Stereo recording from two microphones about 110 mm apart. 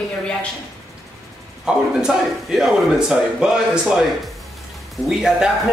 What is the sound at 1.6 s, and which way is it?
Speech, 5° right (ahead or behind).